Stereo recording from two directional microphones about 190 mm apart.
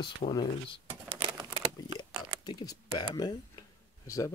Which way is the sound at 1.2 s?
25° right (ahead or behind).